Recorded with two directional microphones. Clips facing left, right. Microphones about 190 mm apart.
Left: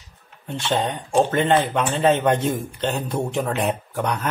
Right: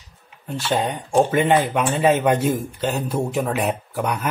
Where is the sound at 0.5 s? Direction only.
5° right (ahead or behind).